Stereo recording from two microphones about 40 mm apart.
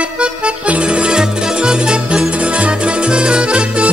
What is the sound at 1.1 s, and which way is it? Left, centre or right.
Music, centre.